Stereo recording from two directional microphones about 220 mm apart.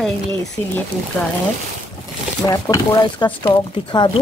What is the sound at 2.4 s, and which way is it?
Speech, 15° left (ahead or behind).